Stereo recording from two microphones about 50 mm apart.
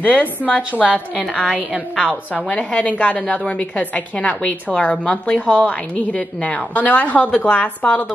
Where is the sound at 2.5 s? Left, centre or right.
Left.